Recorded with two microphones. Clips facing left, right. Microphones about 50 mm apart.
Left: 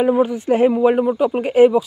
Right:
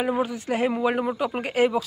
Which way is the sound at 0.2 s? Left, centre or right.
Left.